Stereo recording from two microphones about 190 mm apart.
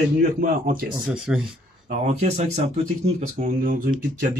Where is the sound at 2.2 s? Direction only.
35° right (ahead or behind).